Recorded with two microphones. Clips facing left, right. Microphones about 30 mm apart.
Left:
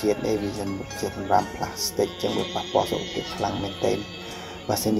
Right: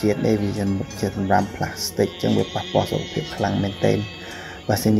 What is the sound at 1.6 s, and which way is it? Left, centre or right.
Speech, centre.